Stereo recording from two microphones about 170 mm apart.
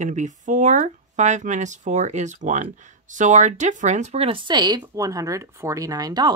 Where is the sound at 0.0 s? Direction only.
45° right (ahead or behind).